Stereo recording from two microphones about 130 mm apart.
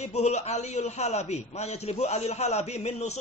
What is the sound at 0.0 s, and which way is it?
A man's voice, 60° left (ahead or behind).